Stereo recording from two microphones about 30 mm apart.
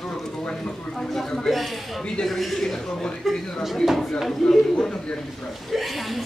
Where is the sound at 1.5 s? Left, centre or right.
Centre.